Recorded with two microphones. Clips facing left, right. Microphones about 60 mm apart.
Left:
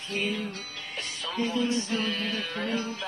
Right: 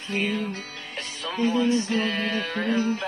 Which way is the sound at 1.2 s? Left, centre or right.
Right.